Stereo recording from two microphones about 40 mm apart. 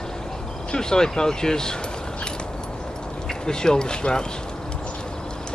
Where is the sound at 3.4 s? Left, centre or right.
Centre.